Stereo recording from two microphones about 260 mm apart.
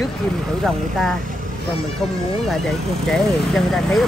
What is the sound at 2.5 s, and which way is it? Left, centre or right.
Speech, centre.